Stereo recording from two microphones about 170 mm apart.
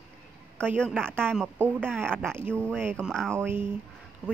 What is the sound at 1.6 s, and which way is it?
Speech, 10° right (ahead or behind).